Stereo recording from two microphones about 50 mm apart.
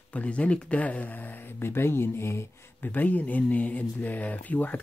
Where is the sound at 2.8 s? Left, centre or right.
Left.